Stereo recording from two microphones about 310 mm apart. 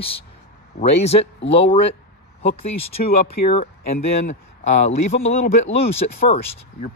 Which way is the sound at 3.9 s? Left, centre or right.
Left.